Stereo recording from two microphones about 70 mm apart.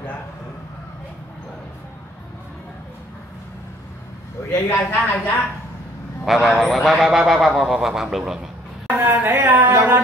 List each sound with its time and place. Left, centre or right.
4.6 s a man's voice: left
6.2 s a man's voice: centre
8.8 s a woman's voice: right